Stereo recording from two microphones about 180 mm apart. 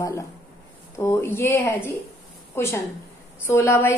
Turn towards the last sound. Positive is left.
turn(degrees=15)  # may be behind; listen again after turning